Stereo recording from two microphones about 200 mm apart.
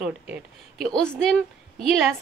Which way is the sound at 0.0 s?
5° right (ahead or behind).